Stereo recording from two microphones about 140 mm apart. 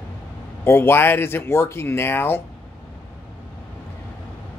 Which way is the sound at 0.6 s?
15° left (ahead or behind).